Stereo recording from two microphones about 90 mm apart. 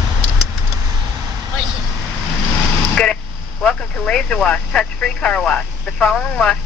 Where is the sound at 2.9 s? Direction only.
10° left (ahead or behind).